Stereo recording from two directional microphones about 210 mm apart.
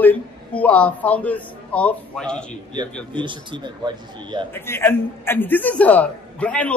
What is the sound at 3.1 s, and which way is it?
A man's voice, 20° right (ahead or behind).